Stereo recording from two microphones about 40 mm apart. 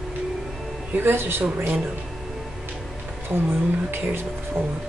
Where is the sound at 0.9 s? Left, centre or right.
Right.